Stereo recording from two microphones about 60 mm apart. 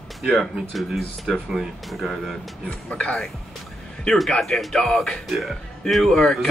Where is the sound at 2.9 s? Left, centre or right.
Centre.